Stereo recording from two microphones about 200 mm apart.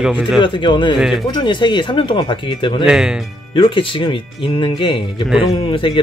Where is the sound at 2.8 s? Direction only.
5° right (ahead or behind).